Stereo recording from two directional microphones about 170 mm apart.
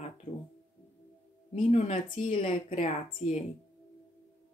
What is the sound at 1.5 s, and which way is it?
A woman's voice, 40° left (ahead or behind).